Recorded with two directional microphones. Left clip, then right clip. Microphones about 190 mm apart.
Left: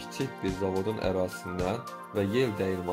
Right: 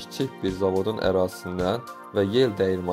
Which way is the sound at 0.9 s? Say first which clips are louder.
Right 6 dB; 20° right (ahead or behind).